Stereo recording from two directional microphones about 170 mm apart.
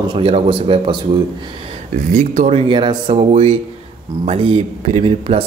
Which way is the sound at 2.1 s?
45° right (ahead or behind).